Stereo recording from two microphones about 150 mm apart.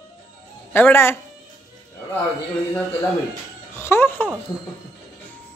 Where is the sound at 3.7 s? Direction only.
15° left (ahead or behind).